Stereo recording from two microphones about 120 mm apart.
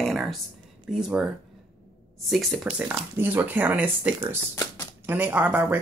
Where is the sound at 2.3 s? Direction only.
Centre (ahead or behind).